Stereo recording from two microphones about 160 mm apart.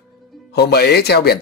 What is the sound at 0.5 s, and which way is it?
Speech, 90° left.